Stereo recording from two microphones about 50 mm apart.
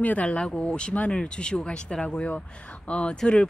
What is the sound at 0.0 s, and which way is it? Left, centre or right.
Speech, left.